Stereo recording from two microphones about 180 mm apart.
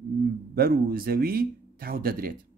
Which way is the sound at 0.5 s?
55° right (ahead or behind).